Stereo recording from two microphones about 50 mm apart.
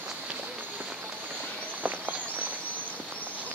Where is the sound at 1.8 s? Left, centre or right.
Right.